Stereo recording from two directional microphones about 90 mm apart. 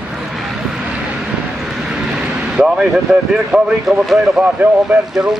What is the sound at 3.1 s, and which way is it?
Speech, 5° right (ahead or behind).